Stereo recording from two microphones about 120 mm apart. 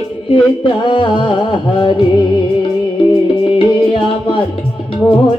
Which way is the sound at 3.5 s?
45° left (ahead or behind).